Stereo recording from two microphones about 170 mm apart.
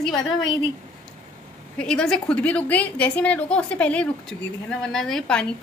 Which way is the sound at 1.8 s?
5° left (ahead or behind).